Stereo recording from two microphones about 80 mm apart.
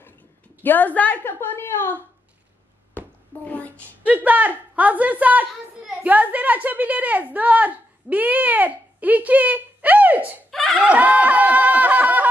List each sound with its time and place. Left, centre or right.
0.6 s a woman's voice: left
3.4 s a woman's voice: left
3.7 s a woman's voice: centre
10.5 s a sound: centre
10.8 s snicker: centre